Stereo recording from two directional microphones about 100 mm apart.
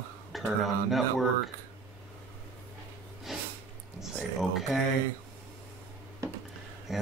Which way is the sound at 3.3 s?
5° right (ahead or behind).